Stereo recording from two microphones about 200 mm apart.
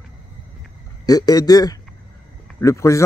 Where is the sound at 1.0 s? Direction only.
20° left (ahead or behind).